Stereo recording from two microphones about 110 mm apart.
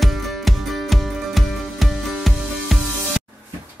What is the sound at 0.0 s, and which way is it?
Music, centre (ahead or behind).